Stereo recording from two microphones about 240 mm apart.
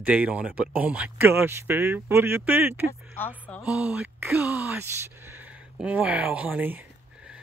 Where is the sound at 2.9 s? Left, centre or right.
Centre.